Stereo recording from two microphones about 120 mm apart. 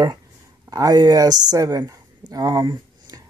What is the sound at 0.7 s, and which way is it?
Speech, 30° right (ahead or behind).